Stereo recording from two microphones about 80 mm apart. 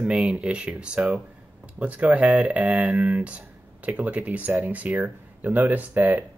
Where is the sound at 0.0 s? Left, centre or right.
Centre.